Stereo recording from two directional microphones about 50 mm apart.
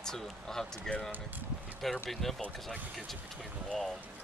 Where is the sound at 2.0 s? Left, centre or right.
Centre.